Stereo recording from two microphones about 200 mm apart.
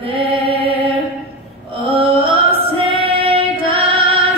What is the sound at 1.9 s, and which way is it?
Female singing, 25° right (ahead or behind).